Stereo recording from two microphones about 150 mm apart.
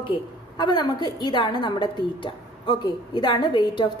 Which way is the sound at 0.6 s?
30° left (ahead or behind).